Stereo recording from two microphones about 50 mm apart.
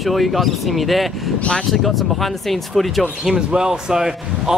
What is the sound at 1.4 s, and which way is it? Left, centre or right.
Speech, centre.